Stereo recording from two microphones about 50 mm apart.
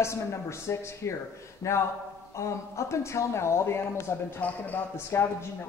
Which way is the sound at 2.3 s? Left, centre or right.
Left.